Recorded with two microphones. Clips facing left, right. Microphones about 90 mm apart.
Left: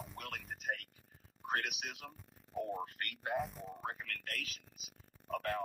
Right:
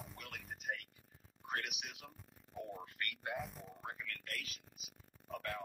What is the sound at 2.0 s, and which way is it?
Speech, 50° left (ahead or behind).